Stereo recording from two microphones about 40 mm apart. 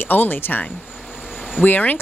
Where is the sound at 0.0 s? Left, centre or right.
Left.